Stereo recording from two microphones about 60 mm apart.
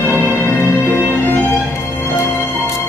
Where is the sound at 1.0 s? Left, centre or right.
Right.